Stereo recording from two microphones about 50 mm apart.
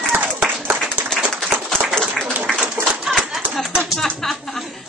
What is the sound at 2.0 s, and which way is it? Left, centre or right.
Applause, centre.